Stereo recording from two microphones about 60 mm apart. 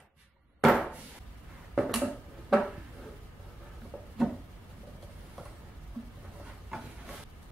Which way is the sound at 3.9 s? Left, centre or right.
Centre.